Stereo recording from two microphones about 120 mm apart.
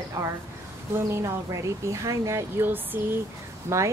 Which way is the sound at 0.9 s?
25° right (ahead or behind).